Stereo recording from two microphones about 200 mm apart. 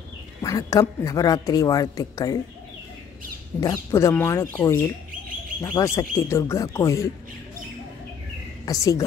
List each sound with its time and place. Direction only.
0.4 s a woman's voice: 15° left (ahead or behind)
3.6 s a woman's voice: 15° left (ahead or behind)
8.6 s a woman's voice: 15° left (ahead or behind)